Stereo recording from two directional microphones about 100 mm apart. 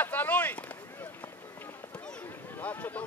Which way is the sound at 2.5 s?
15° left (ahead or behind).